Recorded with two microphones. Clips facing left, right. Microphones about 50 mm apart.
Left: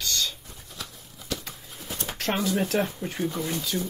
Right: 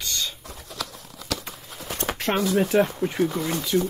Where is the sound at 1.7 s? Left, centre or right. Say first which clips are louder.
Right 6 dB; right.